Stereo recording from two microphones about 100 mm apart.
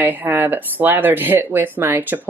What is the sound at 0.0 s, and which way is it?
Speech, 20° right (ahead or behind).